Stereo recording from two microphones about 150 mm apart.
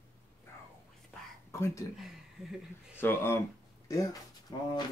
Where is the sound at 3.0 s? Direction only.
15° left (ahead or behind).